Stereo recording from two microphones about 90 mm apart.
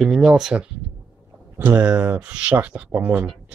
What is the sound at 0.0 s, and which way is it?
Speech, centre (ahead or behind).